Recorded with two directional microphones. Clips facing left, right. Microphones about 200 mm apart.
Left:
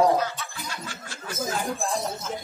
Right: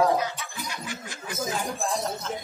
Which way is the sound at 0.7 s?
15° right (ahead or behind).